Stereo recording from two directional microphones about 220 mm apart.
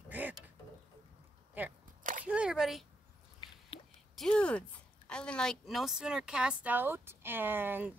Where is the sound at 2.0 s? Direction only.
35° right (ahead or behind).